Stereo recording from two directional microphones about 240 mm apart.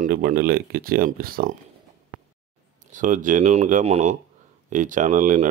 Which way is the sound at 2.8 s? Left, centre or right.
Right.